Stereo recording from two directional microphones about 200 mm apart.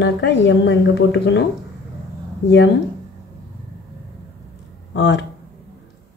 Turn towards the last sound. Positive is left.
turn(degrees=60)  # may be behind; listen again after turning